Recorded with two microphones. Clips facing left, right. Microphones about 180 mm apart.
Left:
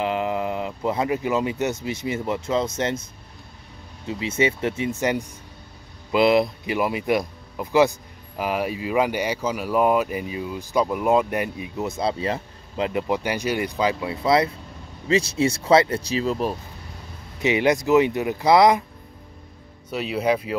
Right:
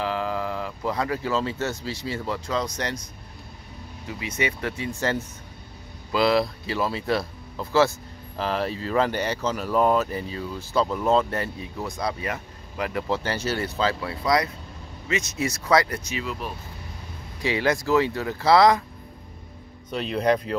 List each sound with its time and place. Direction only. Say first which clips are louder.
0.0 s speech: left 3 dB; 20° left (ahead or behind)
4.1 s speech: left 6 dB; 25° left (ahead or behind)
17.4 s speech: left 4 dB; 20° left (ahead or behind)
19.9 s speech: even; 5° left (ahead or behind)